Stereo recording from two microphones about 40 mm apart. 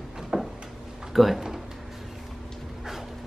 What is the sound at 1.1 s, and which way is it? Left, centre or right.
Speech, centre.